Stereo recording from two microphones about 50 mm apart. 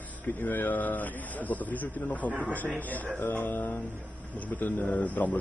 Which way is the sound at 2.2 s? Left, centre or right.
Right.